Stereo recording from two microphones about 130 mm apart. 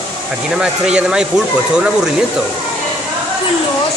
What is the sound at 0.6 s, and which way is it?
Speech, 5° right (ahead or behind).